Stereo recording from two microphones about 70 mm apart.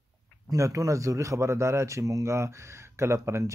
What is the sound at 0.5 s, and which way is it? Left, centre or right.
A man's voice, right.